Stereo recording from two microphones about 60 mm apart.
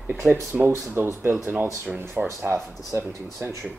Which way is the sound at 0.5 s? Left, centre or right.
Right.